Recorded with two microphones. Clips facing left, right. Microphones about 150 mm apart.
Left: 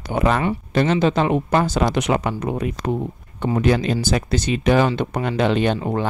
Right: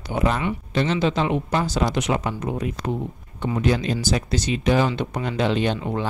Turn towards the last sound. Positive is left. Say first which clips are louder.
# left 4 dB
turn(degrees=40)  # may be behind; listen again after turning